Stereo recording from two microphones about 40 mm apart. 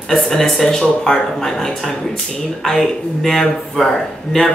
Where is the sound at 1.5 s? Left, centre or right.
Centre.